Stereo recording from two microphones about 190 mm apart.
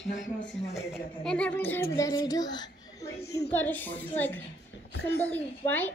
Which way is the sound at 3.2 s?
60° left (ahead or behind).